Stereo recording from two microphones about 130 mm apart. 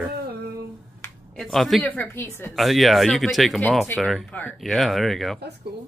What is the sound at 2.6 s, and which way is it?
A woman's voice, centre (ahead or behind).